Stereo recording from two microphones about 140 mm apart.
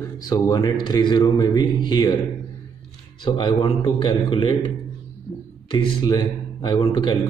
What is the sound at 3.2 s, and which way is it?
A man's voice, 35° left (ahead or behind).